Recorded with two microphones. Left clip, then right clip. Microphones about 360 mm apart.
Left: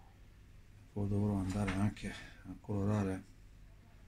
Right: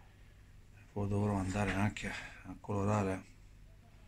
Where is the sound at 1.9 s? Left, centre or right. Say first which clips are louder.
Right 5 dB; right.